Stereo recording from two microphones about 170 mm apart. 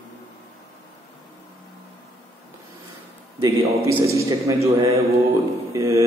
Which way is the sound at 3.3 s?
20° right (ahead or behind).